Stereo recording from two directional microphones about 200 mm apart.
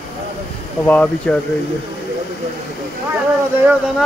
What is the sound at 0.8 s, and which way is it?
Speech, 10° left (ahead or behind).